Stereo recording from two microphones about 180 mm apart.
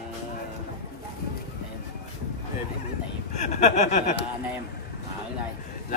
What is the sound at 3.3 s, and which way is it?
Speech, 40° left (ahead or behind).